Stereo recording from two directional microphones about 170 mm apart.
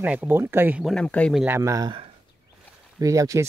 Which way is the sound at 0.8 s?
5° left (ahead or behind).